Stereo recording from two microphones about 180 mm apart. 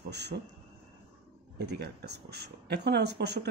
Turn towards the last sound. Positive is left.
turn(degrees=-65)  # may be behind; listen again after turning